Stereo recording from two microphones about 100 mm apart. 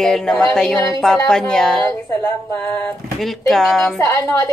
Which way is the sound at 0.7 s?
35° left (ahead or behind).